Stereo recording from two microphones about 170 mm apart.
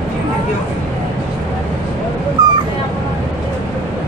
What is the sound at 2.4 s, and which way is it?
Cat, 20° right (ahead or behind).